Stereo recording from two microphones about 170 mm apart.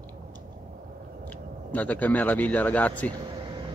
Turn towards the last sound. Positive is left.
turn(degrees=10)  # may be behind; listen again after turning